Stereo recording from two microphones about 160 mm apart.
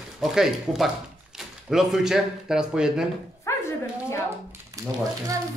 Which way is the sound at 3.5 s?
20° left (ahead or behind).